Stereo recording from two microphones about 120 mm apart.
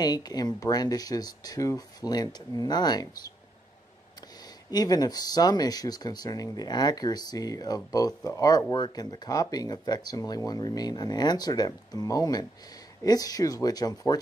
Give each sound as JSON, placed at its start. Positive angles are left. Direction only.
{"t": 0.0, "sound": "speech", "side_deg": 35}
{"t": 4.6, "sound": "speech", "side_deg": 35}